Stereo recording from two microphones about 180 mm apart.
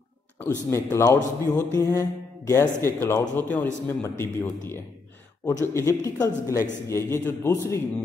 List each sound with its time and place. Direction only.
0.7 s speech: 15° left (ahead or behind)